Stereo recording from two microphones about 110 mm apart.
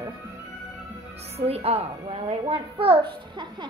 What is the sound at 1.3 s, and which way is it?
A woman's voice, 70° right (ahead or behind).